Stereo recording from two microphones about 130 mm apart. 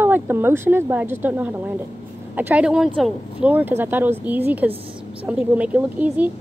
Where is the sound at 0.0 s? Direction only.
15° right (ahead or behind).